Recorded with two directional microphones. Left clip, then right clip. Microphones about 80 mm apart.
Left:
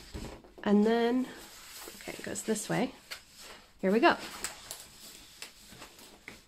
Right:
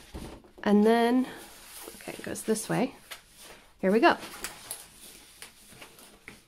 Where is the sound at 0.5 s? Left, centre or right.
Right.